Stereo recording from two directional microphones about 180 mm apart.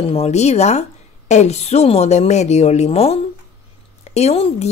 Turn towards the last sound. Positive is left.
turn(degrees=35)  # may be behind; listen again after turning